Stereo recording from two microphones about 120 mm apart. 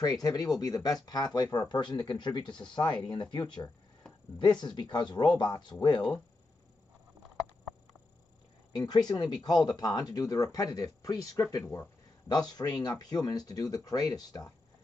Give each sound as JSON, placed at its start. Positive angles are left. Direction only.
{"t": 0.0, "sound": "speech", "side_deg": 35}
{"t": 5.9, "sound": "speech", "side_deg": 10}
{"t": 8.7, "sound": "speech", "side_deg": 35}